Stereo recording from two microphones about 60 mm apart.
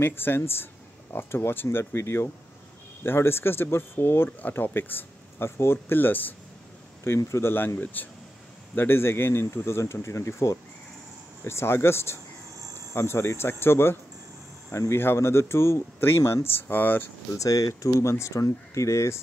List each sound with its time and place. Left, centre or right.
0.0 s speech: left
7.2 s speech: left
7.5 s speech: left
11.4 s speech: left
14.7 s speech: left
17.4 s speech: left
18.0 s speech: left